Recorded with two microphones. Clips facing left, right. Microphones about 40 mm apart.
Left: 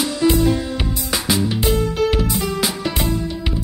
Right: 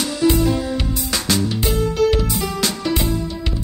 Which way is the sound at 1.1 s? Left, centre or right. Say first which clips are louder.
Left 1 dB; centre.